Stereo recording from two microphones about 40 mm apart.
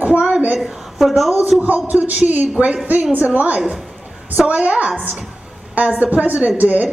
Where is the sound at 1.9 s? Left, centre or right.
Right.